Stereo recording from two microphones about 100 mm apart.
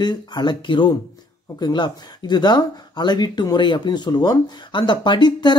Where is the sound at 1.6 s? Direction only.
45° left (ahead or behind).